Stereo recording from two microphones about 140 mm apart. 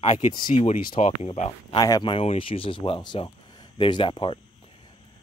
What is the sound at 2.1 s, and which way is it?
Speech, 40° left (ahead or behind).